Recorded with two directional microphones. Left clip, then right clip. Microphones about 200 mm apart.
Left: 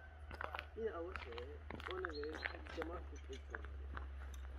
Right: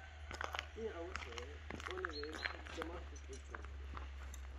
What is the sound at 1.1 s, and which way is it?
Speech, 40° right (ahead or behind).